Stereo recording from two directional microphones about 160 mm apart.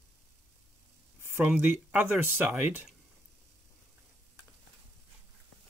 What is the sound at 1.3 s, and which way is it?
Speech, 10° right (ahead or behind).